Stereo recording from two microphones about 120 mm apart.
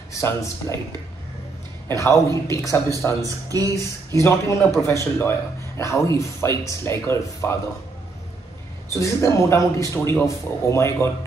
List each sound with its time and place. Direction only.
0.1 s speech: 25° left (ahead or behind)
1.9 s speech: 25° left (ahead or behind)
3.2 s speech: 30° right (ahead or behind)
3.7 s speech: 25° left (ahead or behind)
8.9 s speech: 25° left (ahead or behind)